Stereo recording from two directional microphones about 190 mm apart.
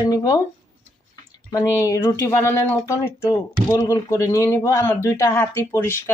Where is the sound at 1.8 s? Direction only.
15° left (ahead or behind).